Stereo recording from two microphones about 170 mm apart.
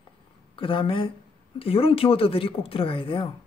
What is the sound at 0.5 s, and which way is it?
Speech, 30° left (ahead or behind).